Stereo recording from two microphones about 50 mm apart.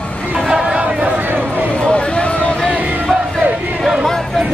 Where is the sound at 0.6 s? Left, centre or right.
Right.